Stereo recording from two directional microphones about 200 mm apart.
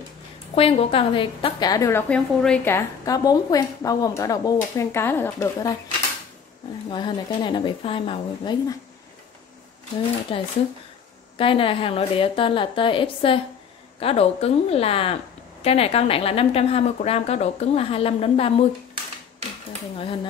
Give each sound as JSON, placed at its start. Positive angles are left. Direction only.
{"t": 0.6, "sound": "a woman's voice", "side_deg": 30}
{"t": 6.9, "sound": "speech", "side_deg": 25}
{"t": 10.3, "sound": "speech", "side_deg": 25}